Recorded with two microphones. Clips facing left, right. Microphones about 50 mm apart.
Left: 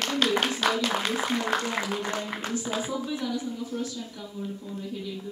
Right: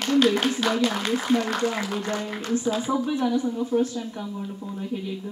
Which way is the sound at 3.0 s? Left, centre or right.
Right.